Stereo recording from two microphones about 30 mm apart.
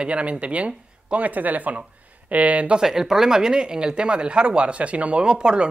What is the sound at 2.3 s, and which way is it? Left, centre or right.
Speech, right.